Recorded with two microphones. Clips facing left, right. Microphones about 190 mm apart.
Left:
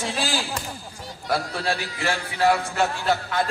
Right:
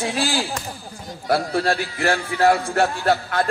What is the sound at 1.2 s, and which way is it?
A man's voice, 50° right (ahead or behind).